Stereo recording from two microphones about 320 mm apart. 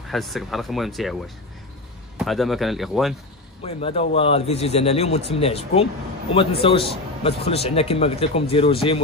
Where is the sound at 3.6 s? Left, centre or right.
Centre.